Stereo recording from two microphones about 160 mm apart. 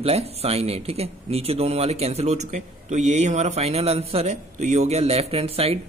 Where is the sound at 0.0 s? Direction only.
40° right (ahead or behind).